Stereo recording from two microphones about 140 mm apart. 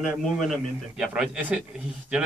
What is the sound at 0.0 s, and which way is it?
A man's voice, centre (ahead or behind).